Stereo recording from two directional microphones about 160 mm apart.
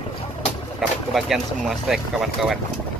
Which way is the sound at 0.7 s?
Centre (ahead or behind).